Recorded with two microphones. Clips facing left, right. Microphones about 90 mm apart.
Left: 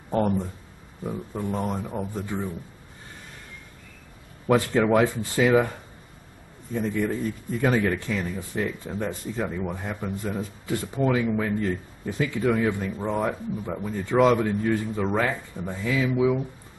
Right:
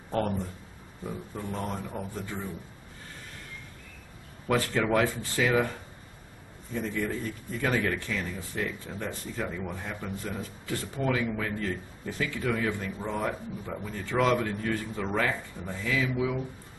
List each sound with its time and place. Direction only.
0.1 s speech: 20° left (ahead or behind)
4.5 s speech: 15° left (ahead or behind)
6.7 s speech: 15° left (ahead or behind)